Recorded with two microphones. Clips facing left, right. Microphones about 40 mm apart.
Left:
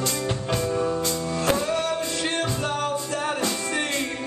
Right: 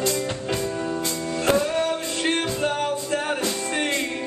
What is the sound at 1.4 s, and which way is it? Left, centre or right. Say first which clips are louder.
Music: right 3 dB; right.